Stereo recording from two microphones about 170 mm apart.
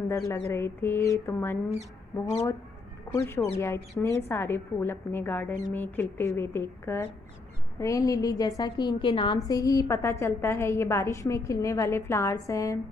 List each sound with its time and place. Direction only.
0.1 s a woman's voice: 15° left (ahead or behind)
3.3 s a woman's voice: 15° left (ahead or behind)